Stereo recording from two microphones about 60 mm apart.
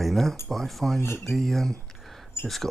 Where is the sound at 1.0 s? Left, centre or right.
Left.